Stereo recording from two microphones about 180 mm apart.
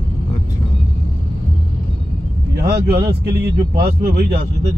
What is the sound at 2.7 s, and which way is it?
Speech, 60° right (ahead or behind).